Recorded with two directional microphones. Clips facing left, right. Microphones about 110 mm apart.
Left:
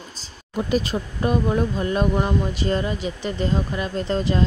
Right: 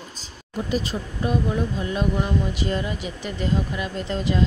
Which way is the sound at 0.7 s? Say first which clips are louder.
Left 3 dB; 55° left (ahead or behind).